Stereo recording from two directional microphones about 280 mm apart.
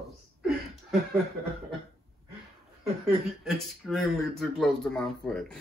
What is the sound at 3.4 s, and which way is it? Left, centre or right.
Speech, centre.